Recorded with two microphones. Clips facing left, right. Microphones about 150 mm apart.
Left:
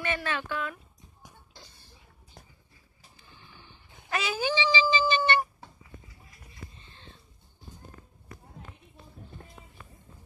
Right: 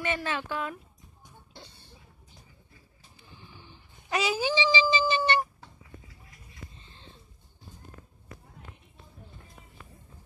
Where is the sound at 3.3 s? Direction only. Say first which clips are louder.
Right 3 dB; 25° right (ahead or behind).